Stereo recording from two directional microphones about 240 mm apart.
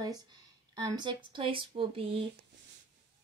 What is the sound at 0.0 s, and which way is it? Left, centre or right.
Speech, centre.